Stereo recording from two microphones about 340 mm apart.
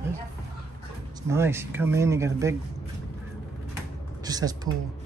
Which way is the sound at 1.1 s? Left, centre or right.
Centre.